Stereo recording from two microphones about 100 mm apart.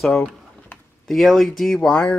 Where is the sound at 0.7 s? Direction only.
20° left (ahead or behind).